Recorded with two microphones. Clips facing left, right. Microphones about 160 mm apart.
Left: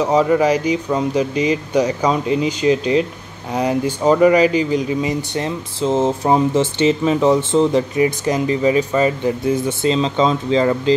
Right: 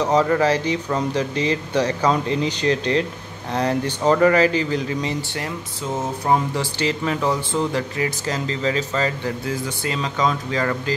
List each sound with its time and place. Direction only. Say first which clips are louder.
0.0 s speech: left 3 dB; 10° left (ahead or behind)